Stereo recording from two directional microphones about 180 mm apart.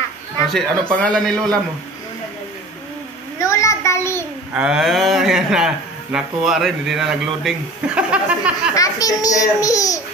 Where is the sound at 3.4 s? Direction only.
15° left (ahead or behind).